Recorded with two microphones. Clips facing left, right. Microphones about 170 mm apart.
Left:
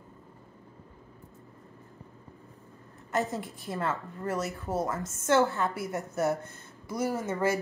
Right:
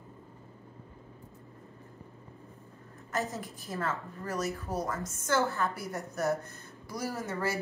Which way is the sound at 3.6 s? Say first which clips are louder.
Left 2 dB; 25° left (ahead or behind).